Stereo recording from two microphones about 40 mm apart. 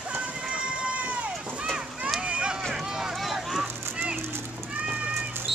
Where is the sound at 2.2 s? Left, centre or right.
Right.